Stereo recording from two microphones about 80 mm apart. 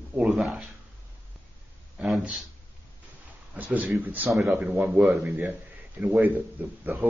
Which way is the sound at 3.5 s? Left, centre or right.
Centre.